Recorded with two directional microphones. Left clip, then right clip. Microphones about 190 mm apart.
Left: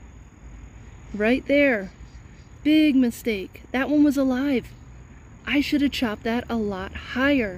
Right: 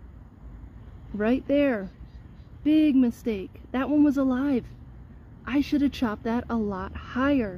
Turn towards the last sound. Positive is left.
turn(degrees=10)  # may be behind; listen again after turning